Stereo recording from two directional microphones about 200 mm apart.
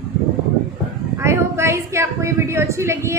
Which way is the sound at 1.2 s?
15° right (ahead or behind).